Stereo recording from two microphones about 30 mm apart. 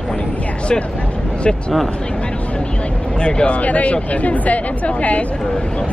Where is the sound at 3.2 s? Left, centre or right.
Left.